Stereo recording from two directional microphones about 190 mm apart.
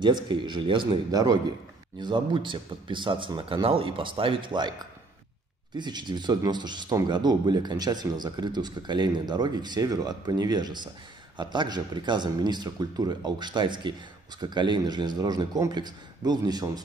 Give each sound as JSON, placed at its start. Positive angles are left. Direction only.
{"t": 0.0, "sound": "speech", "side_deg": -25}
{"t": 5.8, "sound": "speech", "side_deg": -25}